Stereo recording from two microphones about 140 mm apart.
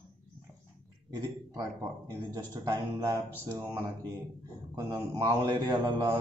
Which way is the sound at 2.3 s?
25° right (ahead or behind).